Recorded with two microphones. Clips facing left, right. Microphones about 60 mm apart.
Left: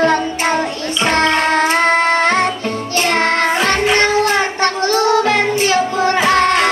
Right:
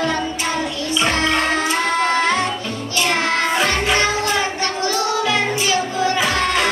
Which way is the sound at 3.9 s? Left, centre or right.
Left.